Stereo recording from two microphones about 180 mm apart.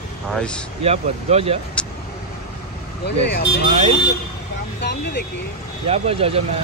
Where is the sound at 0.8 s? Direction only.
35° right (ahead or behind).